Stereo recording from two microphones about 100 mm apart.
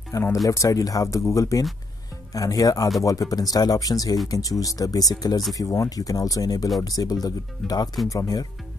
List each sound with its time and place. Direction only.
0.1 s speech: 30° left (ahead or behind)